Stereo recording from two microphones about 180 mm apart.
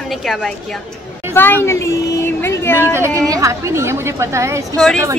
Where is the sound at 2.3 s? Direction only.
15° left (ahead or behind).